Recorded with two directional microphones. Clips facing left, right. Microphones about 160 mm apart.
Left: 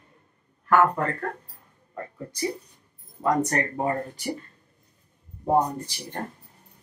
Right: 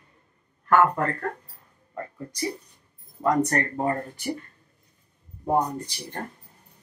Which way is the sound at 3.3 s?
10° left (ahead or behind).